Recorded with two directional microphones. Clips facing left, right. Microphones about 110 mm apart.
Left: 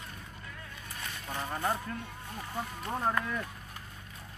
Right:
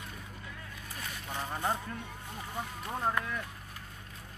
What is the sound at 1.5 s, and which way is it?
Speech, 15° right (ahead or behind).